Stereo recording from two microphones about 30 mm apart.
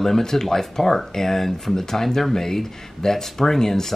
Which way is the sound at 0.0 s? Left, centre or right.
Centre.